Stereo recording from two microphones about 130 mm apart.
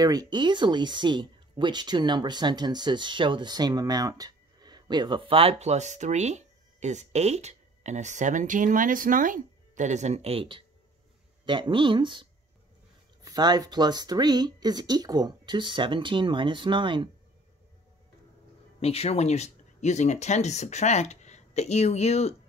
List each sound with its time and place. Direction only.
0.0 s speech: 30° right (ahead or behind)
18.8 s speech: 50° left (ahead or behind)